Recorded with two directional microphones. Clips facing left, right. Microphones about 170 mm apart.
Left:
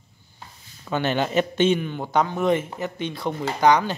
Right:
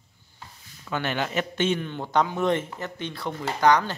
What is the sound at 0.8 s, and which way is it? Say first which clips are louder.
Speech: left 5 dB; 25° left (ahead or behind).